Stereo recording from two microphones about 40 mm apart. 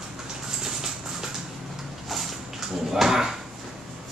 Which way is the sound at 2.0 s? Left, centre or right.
Centre.